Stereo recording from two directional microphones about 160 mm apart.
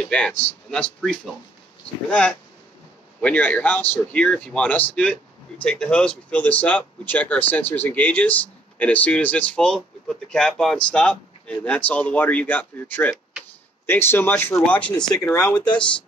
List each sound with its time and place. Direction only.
0.0 s speech: 10° left (ahead or behind)
15.2 s speech: 20° left (ahead or behind)